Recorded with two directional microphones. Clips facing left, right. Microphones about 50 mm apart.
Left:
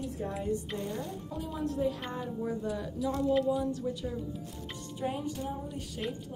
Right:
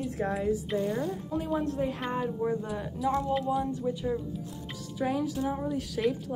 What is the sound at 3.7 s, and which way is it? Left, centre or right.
Speech, centre.